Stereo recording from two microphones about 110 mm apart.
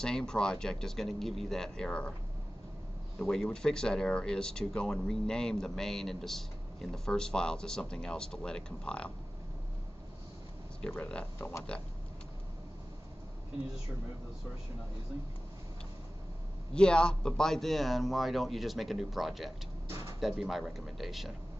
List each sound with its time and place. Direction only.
0.0 s a man's voice: 5° left (ahead or behind)
3.2 s speech: 5° left (ahead or behind)
10.9 s speech: 10° left (ahead or behind)
11.3 s speech: 25° left (ahead or behind)
16.7 s a man's voice: 10° left (ahead or behind)